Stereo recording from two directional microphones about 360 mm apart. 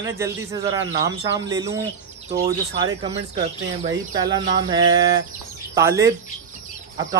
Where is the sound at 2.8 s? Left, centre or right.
Centre.